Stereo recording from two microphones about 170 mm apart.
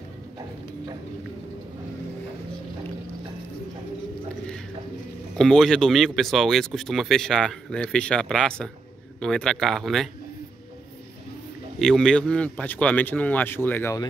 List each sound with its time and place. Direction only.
5.4 s speech: 5° left (ahead or behind)
11.8 s speech: 5° left (ahead or behind)